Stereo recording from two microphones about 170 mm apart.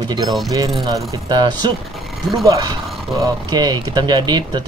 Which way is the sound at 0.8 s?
25° right (ahead or behind).